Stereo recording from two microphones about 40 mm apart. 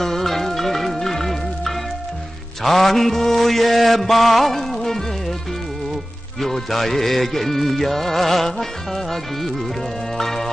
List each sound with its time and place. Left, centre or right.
0.0 s music: centre
2.6 s mantra: centre
6.4 s music: centre